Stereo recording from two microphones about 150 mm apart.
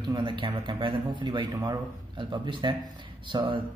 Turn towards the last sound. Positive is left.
turn(degrees=-35)  # may be behind; listen again after turning